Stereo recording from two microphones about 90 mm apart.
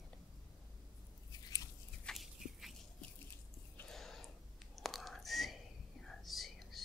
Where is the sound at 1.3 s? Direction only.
40° left (ahead or behind).